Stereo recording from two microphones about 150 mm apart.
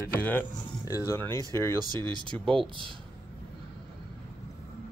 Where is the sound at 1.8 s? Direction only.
30° right (ahead or behind).